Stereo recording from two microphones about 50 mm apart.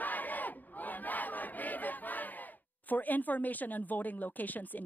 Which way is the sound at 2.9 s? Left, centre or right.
Left.